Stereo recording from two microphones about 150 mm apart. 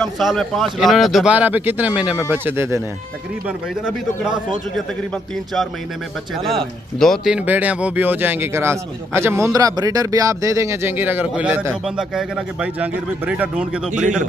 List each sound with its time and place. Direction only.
0.0 s speech: centre (ahead or behind); by 2.8 s 15° right (ahead or behind)
3.4 s speech: 5° right (ahead or behind)
6.3 s speech: centre (ahead or behind)
7.3 s speech: 10° right (ahead or behind)